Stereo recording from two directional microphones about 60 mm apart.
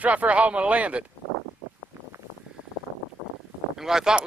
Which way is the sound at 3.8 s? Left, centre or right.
Centre.